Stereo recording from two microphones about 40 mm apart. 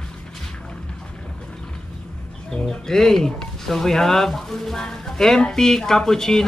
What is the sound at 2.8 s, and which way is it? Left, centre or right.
Speech, centre.